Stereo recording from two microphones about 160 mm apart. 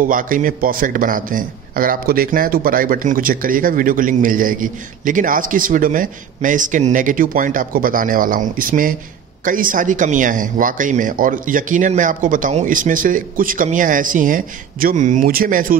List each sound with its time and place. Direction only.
0.0 s a man's voice: 55° right (ahead or behind)